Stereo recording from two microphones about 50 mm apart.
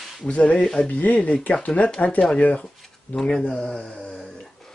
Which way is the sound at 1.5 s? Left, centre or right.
Left.